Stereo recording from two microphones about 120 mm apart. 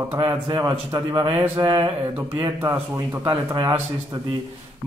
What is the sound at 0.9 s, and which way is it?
Speech, 35° right (ahead or behind).